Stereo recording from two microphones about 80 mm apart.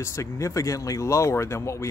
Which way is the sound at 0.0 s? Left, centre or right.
Left.